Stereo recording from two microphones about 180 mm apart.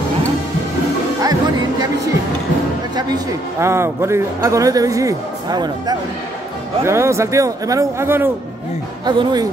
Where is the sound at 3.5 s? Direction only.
15° right (ahead or behind).